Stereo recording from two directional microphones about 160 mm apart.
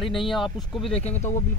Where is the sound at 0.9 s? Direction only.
40° left (ahead or behind).